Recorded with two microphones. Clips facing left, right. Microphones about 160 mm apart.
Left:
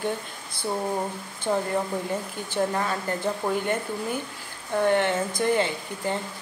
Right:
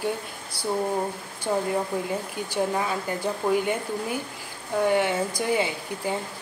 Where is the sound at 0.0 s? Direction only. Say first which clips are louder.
Right 1 dB; 10° right (ahead or behind).